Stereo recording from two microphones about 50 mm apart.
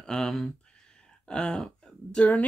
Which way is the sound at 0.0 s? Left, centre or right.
Centre.